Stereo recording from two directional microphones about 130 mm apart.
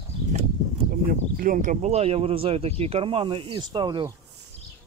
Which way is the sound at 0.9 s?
90° right.